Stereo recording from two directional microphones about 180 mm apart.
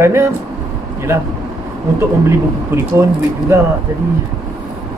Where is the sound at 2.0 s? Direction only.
15° right (ahead or behind).